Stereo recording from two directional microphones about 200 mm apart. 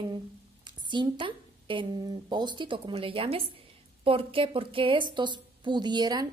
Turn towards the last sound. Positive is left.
turn(degrees=-20)  # may be behind; listen again after turning